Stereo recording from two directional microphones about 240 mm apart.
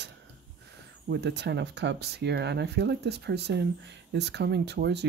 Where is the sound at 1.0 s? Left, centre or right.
Right.